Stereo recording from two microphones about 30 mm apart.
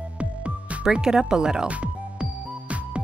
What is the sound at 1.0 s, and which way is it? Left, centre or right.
Speech, right.